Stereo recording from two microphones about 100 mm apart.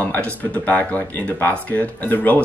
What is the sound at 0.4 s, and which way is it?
Speech, 15° left (ahead or behind).